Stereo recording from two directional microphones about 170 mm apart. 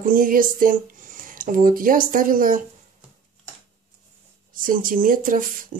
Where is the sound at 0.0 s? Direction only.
55° right (ahead or behind).